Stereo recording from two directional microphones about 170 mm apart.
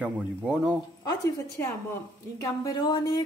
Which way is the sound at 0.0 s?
10° right (ahead or behind).